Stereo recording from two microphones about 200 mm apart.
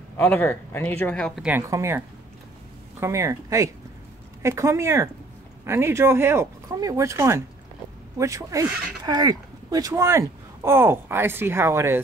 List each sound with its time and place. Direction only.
0.2 s speech: 10° left (ahead or behind)
1.7 s speech: 15° right (ahead or behind)